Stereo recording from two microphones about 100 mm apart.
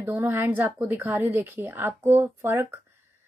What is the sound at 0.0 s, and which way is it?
A woman's voice, 20° right (ahead or behind).